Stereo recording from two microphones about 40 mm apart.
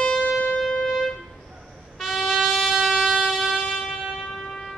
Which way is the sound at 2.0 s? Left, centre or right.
Centre.